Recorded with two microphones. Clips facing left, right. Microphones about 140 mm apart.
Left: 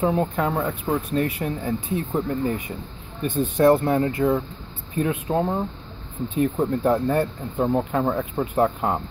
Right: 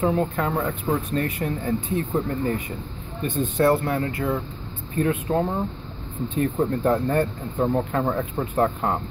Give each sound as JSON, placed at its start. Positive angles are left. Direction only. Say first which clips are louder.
{"t": 0.0, "sound": "speech", "louder": "left 1 dB", "side_deg": 20}